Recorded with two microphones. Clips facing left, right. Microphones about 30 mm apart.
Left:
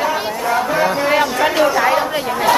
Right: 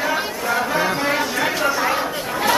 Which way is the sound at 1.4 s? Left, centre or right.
Centre.